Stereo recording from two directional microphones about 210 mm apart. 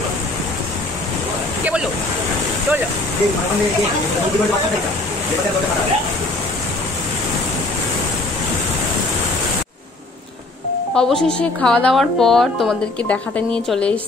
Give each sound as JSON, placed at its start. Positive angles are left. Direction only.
{"t": 11.0, "sound": "a woman's voice", "side_deg": 5}